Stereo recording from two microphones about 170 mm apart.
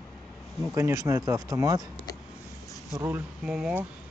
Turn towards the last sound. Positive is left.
turn(degrees=-5)  # may be behind; listen again after turning